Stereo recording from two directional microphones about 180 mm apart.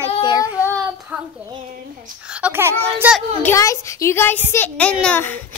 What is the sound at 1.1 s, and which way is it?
A child's voice, 5° right (ahead or behind).